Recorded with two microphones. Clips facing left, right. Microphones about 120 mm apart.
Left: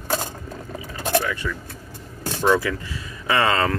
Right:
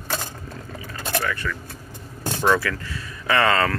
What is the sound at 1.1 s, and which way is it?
Speech, 20° left (ahead or behind).